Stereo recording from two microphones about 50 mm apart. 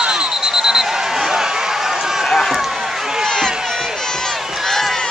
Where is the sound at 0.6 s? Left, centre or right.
Centre.